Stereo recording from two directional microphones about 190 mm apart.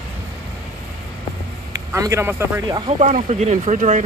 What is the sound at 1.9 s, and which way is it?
Speech, 15° right (ahead or behind).